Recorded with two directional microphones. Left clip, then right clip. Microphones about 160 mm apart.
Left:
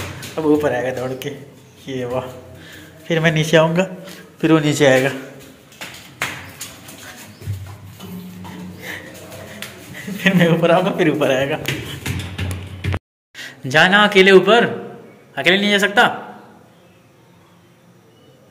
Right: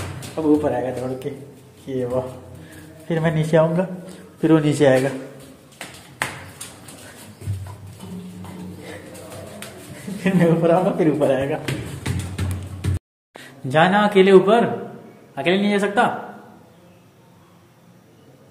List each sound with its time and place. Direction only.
0.4 s speech: centre (ahead or behind)
0.7 s a man's voice: 10° right (ahead or behind)
4.4 s a man's voice: 20° right (ahead or behind)
10.2 s speech: centre (ahead or behind)
13.3 s a man's voice: 10° right (ahead or behind)